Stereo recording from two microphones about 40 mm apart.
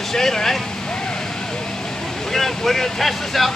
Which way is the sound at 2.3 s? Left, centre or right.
Centre.